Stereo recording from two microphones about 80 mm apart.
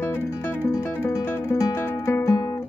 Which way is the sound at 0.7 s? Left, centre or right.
Left.